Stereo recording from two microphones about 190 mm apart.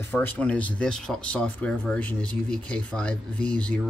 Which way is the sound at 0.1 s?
10° left (ahead or behind).